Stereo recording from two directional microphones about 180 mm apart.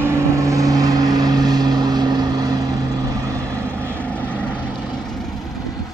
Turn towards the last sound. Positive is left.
turn(degrees=5)  # may be behind; listen again after turning